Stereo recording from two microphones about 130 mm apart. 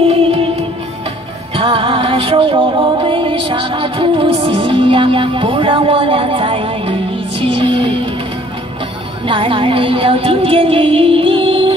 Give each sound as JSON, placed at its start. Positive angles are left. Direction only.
{"t": 0.0, "sound": "music", "side_deg": -50}
{"t": 1.6, "sound": "music", "side_deg": -45}
{"t": 9.3, "sound": "music", "side_deg": -45}